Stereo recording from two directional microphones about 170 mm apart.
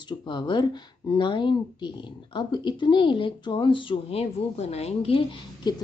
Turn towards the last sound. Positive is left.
turn(degrees=30)  # may be behind; listen again after turning